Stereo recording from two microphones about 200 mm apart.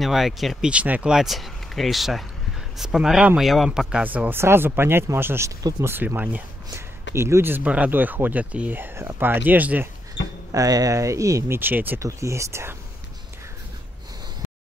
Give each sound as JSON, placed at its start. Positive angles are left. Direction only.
{"t": 0.0, "sound": "speech", "side_deg": 0}
{"t": 10.2, "sound": "speech", "side_deg": 60}
{"t": 10.5, "sound": "speech", "side_deg": -15}